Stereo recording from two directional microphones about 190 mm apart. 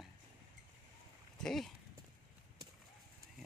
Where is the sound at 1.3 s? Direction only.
5° left (ahead or behind).